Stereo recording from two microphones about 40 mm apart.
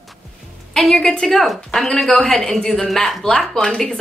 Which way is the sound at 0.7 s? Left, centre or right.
Centre.